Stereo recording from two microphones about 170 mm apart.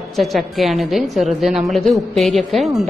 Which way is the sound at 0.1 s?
Centre (ahead or behind).